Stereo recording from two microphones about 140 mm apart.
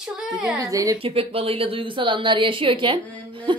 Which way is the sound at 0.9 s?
40° right (ahead or behind).